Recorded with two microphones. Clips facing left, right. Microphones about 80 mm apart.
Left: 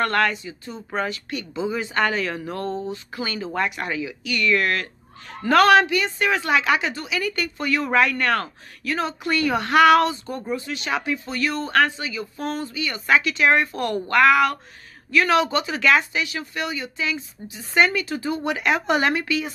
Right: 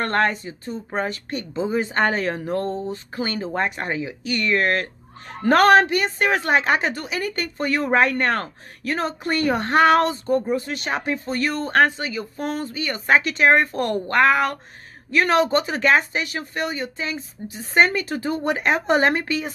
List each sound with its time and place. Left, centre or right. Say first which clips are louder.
0.0 s a woman's voice: even; right